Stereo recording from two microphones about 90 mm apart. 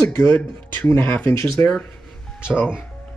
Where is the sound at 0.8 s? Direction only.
25° left (ahead or behind).